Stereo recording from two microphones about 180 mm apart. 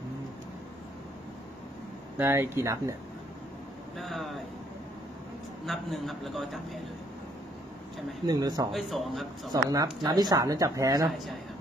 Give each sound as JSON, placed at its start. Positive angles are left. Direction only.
{"t": 2.1, "sound": "speech", "side_deg": -15}
{"t": 4.0, "sound": "a man's voice", "side_deg": 0}
{"t": 5.7, "sound": "a man's voice", "side_deg": 0}
{"t": 8.3, "sound": "speech", "side_deg": -20}
{"t": 8.7, "sound": "a man's voice", "side_deg": 0}
{"t": 9.5, "sound": "speech", "side_deg": -20}